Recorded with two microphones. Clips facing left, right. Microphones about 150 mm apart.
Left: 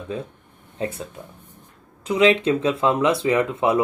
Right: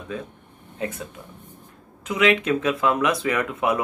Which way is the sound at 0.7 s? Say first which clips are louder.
Left 2 dB; 30° left (ahead or behind).